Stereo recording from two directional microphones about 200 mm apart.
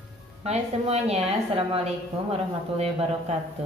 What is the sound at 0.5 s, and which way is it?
Speech, 30° right (ahead or behind).